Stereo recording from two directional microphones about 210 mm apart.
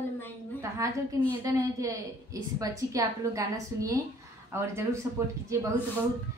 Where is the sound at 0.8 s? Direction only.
15° right (ahead or behind).